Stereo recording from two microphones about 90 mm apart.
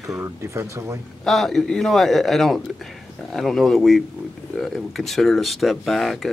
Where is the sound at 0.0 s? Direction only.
35° right (ahead or behind).